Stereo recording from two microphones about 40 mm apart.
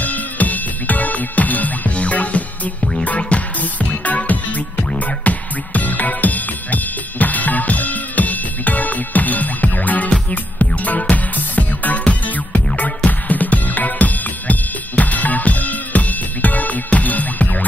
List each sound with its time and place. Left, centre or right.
0.0 s music: left